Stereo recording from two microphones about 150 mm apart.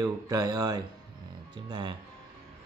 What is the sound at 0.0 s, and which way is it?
Speech, 25° right (ahead or behind).